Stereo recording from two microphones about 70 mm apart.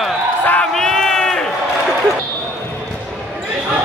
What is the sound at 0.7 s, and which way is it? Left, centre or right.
Crowd, centre.